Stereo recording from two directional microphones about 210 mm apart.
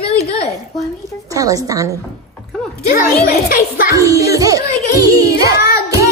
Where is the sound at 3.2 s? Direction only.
45° left (ahead or behind).